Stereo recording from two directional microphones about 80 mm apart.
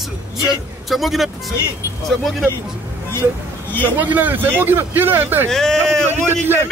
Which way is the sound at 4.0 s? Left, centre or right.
Right.